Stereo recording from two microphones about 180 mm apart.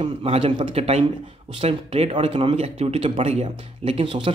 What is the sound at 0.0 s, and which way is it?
Speech, 35° right (ahead or behind).